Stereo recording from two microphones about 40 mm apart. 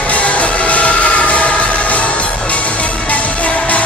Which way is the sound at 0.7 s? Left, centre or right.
Left.